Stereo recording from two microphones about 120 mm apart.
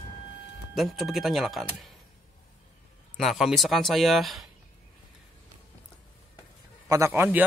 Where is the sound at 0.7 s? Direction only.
Centre (ahead or behind).